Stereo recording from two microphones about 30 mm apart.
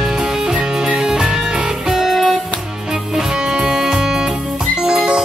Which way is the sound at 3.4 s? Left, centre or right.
Right.